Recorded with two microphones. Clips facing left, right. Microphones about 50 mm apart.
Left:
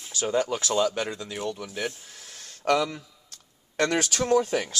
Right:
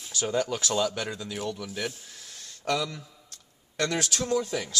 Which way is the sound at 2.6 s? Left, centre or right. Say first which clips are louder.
Left 5 dB; left.